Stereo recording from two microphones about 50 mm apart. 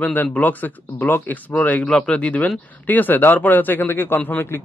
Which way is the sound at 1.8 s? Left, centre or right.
Centre.